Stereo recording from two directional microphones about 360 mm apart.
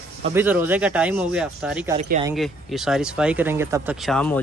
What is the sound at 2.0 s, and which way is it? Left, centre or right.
Speech, centre.